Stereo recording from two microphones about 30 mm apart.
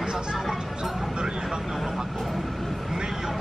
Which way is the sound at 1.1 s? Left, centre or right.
Centre.